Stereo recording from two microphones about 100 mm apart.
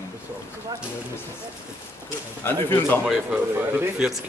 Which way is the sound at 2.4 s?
20° left (ahead or behind).